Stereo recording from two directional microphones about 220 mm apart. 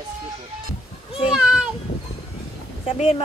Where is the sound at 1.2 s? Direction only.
5° right (ahead or behind).